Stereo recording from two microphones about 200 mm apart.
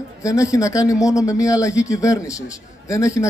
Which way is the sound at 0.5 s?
15° left (ahead or behind).